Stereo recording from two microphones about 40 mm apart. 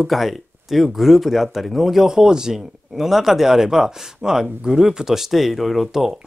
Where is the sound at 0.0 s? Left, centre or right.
Centre.